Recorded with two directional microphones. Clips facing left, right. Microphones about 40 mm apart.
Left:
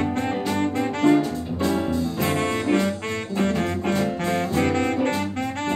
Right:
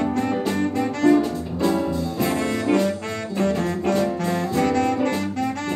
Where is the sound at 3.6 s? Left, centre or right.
Left.